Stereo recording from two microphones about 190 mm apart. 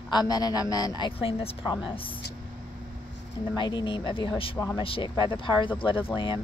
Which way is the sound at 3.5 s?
25° left (ahead or behind).